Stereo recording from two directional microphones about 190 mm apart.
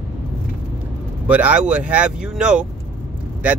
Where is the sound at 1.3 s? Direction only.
5° right (ahead or behind).